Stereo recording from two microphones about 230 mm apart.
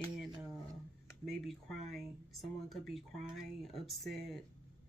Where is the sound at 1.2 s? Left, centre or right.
Centre.